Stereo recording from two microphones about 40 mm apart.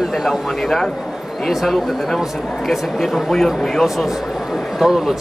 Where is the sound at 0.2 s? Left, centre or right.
Centre.